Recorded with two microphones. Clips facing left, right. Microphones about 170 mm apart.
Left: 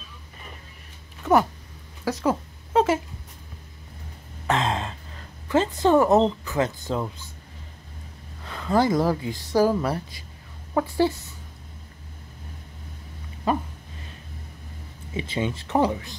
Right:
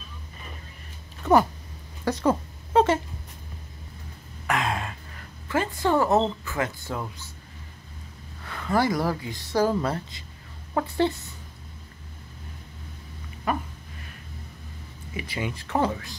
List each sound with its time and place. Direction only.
2.0 s a sound: centre (ahead or behind)
4.5 s speech: 25° left (ahead or behind)
8.5 s speech: 20° left (ahead or behind)
15.1 s speech: 25° left (ahead or behind)